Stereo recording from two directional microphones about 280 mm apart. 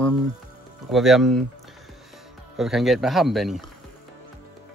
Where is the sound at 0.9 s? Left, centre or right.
Centre.